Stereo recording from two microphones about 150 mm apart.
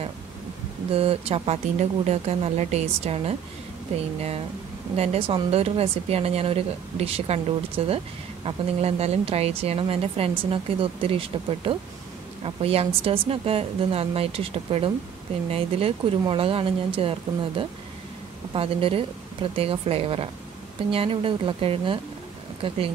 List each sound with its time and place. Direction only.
0.9 s speech: 40° right (ahead or behind)
4.9 s speech: 45° right (ahead or behind)